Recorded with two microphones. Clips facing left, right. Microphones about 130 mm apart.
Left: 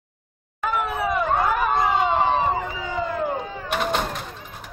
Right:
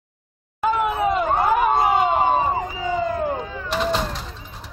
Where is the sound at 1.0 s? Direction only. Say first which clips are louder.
Right 1 dB; 25° right (ahead or behind).